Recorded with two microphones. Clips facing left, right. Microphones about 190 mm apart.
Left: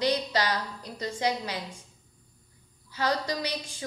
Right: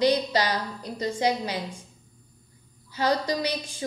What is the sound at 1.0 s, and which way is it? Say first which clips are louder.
Speech: right 4 dB; 25° right (ahead or behind).